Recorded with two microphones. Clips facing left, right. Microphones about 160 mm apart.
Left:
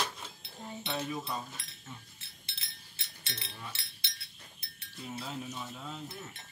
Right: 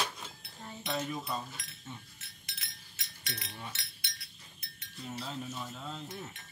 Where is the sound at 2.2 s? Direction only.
30° left (ahead or behind).